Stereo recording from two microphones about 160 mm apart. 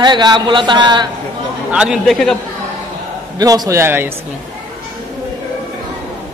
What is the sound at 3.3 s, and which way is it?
Speech, 20° right (ahead or behind).